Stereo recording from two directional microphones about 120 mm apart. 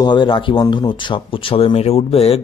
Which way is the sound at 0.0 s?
40° left (ahead or behind).